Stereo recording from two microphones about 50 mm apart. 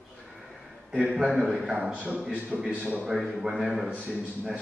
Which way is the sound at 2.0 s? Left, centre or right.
Right.